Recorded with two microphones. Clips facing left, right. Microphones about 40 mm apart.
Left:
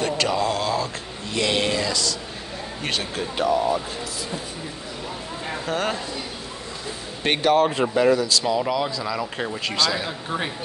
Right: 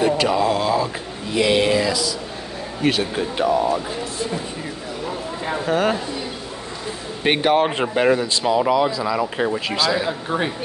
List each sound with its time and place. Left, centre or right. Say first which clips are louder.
0.0 s a sound: right 5 dB; centre
1.3 s speech: right 5 dB; centre
5.7 s speech: right 6 dB; centre
7.2 s speech: right 2 dB; centre
7.5 s speech: right 1 dB; right; by 10.5 s centre